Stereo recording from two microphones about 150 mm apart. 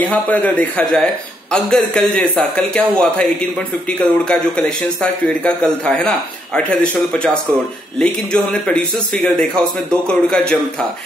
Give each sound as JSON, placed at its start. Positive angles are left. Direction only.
{"t": 0.0, "sound": "a man's voice", "side_deg": 10}
{"t": 8.0, "sound": "speech", "side_deg": 5}